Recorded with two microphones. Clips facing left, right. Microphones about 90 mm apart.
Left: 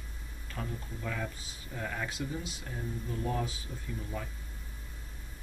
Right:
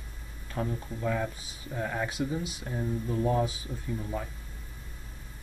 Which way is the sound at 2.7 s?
30° right (ahead or behind).